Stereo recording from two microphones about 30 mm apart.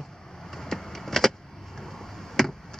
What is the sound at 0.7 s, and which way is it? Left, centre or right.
Vehicle, centre.